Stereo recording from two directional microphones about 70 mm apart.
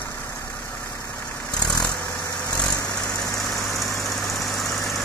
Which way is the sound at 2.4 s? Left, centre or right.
Centre.